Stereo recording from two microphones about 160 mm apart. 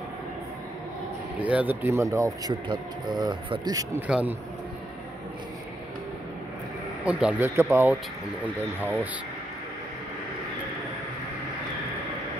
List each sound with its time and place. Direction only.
1.4 s speech: 10° right (ahead or behind)
4.1 s speech: 10° right (ahead or behind)
7.1 s speech: 5° right (ahead or behind)